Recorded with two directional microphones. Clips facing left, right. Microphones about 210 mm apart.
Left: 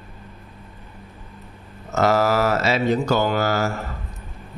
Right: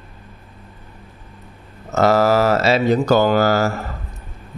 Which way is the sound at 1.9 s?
35° right (ahead or behind).